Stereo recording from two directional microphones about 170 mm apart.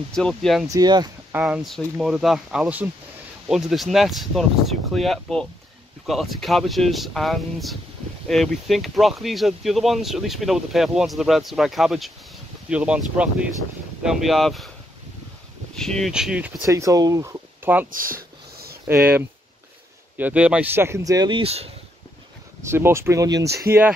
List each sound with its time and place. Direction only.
0.1 s speech: 5° left (ahead or behind)
0.7 s speech: 25° right (ahead or behind)
1.3 s speech: 5° right (ahead or behind)
15.7 s speech: 5° left (ahead or behind)
16.6 s speech: 20° right (ahead or behind)
17.9 s a sound: 55° right (ahead or behind)
18.9 s speech: 15° right (ahead or behind); by 21.7 s 35° right (ahead or behind)
22.6 s speech: 15° right (ahead or behind)
23.4 s speech: 70° right (ahead or behind)